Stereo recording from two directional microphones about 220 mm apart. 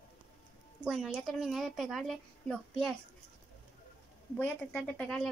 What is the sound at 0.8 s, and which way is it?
Speech, centre (ahead or behind).